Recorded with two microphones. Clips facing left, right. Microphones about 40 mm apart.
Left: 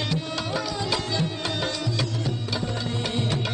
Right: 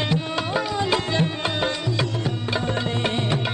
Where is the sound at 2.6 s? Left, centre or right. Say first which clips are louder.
Right 5 dB; right.